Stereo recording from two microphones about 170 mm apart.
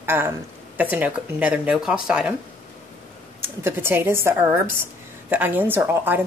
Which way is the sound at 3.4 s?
15° right (ahead or behind).